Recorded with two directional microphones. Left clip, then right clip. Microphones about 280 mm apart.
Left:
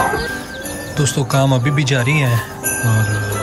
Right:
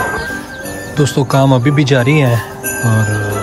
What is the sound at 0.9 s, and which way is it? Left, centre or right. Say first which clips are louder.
Speech: right 5 dB; centre.